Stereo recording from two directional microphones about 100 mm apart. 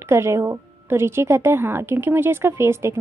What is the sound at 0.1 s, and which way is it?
Speech, 25° right (ahead or behind).